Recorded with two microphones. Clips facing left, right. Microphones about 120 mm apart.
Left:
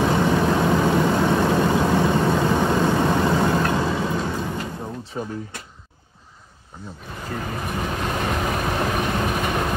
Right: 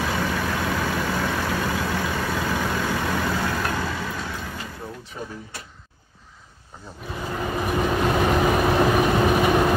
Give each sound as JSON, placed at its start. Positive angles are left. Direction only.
{"t": 0.0, "sound": "vehicle", "side_deg": 25}
{"t": 7.2, "sound": "vehicle", "side_deg": -5}